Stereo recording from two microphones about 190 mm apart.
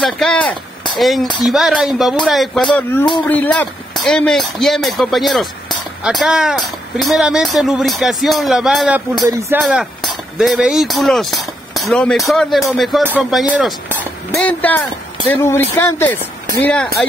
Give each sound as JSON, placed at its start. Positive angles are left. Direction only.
{"t": 0.0, "sound": "speech", "side_deg": 5}
{"t": 9.2, "sound": "speech", "side_deg": -15}
{"t": 9.7, "sound": "speech", "side_deg": -5}
{"t": 14.3, "sound": "speech", "side_deg": 10}